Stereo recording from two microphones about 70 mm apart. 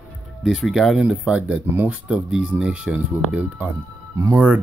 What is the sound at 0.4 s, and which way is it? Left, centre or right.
Speech, centre.